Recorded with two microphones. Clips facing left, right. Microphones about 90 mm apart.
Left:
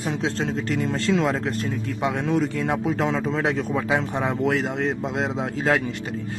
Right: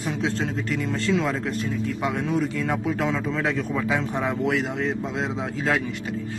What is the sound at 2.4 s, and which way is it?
Speech, 30° left (ahead or behind).